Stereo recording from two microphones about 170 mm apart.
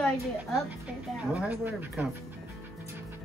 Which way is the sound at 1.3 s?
10° right (ahead or behind).